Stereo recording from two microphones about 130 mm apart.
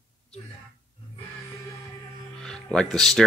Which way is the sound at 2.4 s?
5° left (ahead or behind).